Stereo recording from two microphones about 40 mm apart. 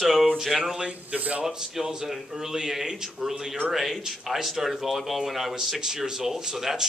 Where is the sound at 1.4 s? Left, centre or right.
Centre.